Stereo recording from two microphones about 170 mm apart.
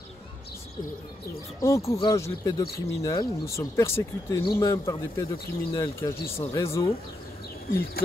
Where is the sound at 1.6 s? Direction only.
15° left (ahead or behind).